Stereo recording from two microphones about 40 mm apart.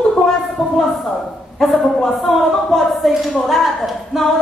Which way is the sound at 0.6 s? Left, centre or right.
Left.